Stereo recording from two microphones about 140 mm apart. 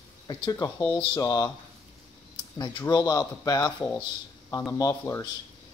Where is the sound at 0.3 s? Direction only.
25° left (ahead or behind).